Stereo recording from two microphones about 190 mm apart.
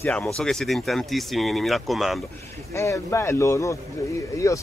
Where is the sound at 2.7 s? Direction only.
15° left (ahead or behind).